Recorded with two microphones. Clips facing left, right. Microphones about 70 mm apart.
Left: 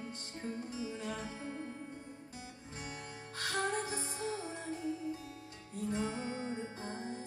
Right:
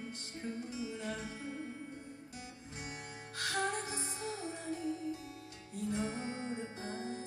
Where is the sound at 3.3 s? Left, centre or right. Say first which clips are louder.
Left 1 dB; left.